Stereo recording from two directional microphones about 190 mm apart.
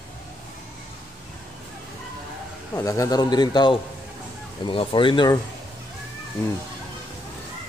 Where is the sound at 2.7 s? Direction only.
15° left (ahead or behind).